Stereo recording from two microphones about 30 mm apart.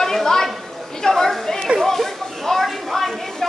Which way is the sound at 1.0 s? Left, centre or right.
Centre.